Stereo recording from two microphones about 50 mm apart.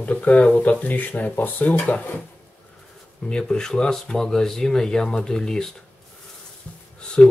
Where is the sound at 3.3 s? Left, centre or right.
Centre.